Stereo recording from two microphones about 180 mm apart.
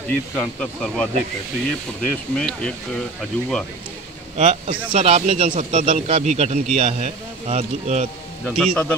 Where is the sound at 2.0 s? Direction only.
5° left (ahead or behind).